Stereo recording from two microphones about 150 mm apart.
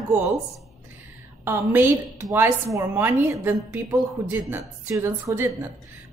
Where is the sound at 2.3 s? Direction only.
20° right (ahead or behind).